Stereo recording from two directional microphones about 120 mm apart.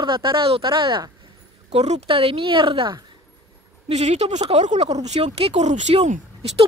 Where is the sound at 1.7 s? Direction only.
65° right (ahead or behind); by 3.0 s 45° right (ahead or behind).